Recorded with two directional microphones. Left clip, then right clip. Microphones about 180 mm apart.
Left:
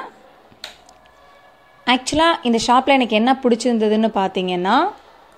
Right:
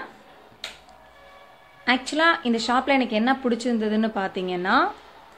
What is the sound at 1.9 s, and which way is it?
A woman's voice, 30° left (ahead or behind).